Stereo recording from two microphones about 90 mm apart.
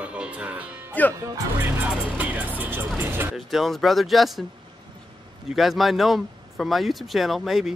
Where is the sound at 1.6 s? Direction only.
15° right (ahead or behind).